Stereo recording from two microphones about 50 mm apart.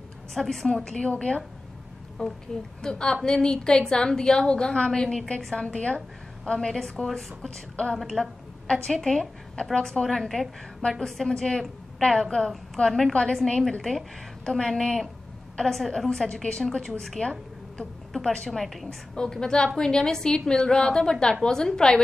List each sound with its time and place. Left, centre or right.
0.3 s a woman's voice: centre
0.8 s a woman's voice: centre
17.2 s a sound: centre
18.2 s a woman's voice: centre
18.5 s a woman's voice: centre